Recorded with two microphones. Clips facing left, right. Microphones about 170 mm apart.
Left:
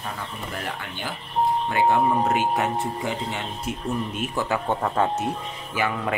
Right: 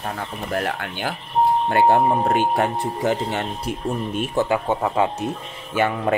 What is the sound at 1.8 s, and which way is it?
Speech, 35° right (ahead or behind).